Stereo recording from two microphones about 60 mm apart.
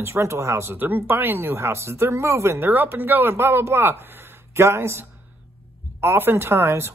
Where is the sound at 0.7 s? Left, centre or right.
Right.